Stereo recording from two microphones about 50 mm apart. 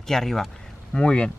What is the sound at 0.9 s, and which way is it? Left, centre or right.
Speech, left.